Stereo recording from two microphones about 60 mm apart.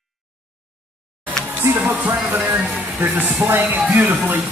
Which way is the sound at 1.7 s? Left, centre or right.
Right.